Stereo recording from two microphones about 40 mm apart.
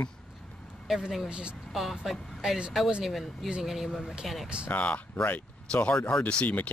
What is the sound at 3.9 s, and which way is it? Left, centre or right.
Speech, centre.